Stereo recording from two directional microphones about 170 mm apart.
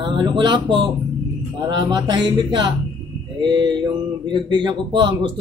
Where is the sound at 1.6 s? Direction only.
25° right (ahead or behind).